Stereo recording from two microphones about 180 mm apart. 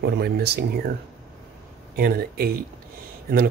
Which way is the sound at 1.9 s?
55° right (ahead or behind).